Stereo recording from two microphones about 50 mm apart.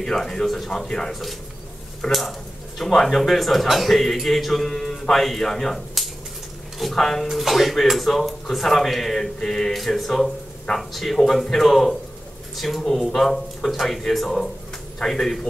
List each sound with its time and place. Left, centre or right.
0.0 s speech: centre